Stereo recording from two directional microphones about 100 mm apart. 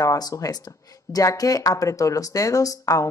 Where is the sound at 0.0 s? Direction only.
35° left (ahead or behind).